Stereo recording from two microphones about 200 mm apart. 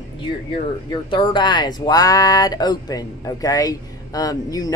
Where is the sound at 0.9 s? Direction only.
25° left (ahead or behind).